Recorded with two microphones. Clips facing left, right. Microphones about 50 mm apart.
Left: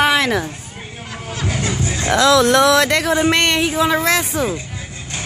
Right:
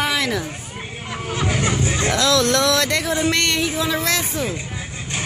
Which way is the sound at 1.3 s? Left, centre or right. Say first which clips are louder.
Right 1 dB; right.